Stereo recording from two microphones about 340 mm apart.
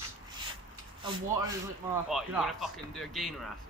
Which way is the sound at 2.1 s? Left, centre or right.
Centre.